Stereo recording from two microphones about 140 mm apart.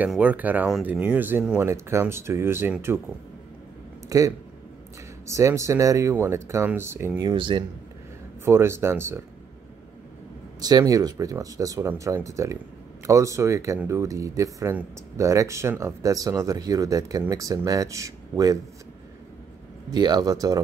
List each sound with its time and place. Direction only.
0.0 s speech: 10° right (ahead or behind)
4.1 s speech: 25° right (ahead or behind)
7.2 s speech: 35° right (ahead or behind)
8.5 s speech: 20° right (ahead or behind)
10.6 s speech: 25° right (ahead or behind)
19.9 s speech: 30° right (ahead or behind)